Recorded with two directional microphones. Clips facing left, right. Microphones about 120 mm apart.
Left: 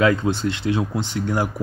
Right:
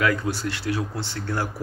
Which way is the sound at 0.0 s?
20° left (ahead or behind).